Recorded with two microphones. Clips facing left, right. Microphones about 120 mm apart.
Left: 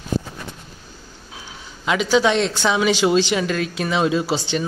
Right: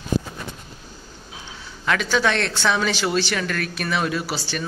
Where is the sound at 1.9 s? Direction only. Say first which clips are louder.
Left 4 dB; 15° left (ahead or behind).